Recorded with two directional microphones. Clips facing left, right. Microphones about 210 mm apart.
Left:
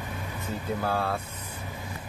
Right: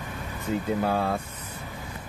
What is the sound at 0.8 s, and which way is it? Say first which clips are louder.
Speech: right 3 dB; 15° right (ahead or behind).